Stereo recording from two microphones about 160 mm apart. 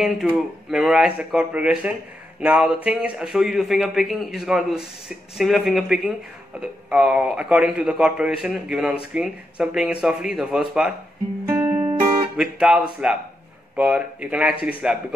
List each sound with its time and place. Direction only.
0.7 s a man's voice: 5° right (ahead or behind)
11.4 s music: 15° right (ahead or behind)
12.4 s a man's voice: 5° right (ahead or behind)